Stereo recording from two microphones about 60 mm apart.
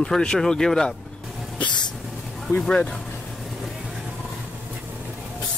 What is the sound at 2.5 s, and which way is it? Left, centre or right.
Speech, centre.